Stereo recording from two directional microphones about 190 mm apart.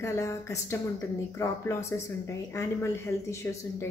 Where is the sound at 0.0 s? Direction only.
15° left (ahead or behind).